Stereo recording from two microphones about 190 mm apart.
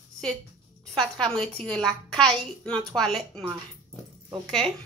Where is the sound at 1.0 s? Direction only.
5° left (ahead or behind).